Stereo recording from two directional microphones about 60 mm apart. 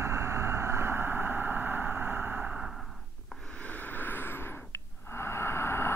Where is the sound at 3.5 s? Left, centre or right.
Left.